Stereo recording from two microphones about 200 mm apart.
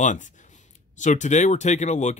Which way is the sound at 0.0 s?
40° left (ahead or behind).